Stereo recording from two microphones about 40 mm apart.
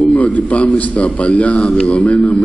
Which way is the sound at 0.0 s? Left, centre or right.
Left.